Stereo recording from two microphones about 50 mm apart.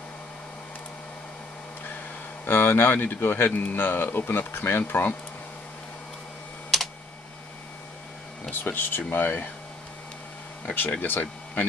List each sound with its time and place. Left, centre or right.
2.4 s speech: left
8.5 s speech: left
10.9 s speech: left